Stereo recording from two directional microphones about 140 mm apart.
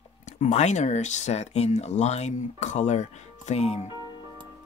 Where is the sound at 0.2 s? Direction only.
60° left (ahead or behind).